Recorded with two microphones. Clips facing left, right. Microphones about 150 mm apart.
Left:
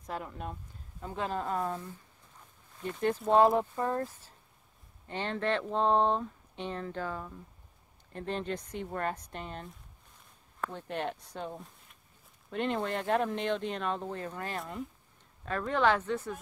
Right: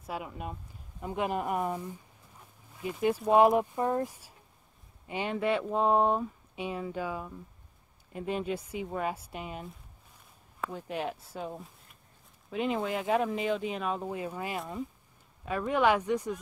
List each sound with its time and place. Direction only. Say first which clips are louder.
0.0 s speech: right 1 dB; 10° right (ahead or behind)